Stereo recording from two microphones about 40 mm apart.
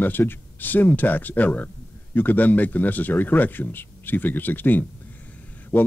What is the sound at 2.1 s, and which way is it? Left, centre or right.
Speech, left.